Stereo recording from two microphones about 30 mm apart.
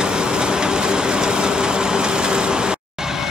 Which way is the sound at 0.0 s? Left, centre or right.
Right.